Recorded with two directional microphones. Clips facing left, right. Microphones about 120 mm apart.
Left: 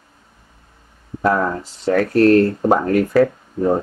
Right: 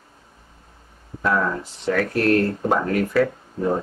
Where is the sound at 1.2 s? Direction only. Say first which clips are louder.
Left 4 dB; 35° left (ahead or behind).